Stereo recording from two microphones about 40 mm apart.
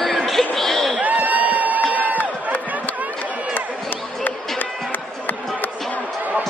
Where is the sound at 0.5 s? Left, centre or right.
Centre.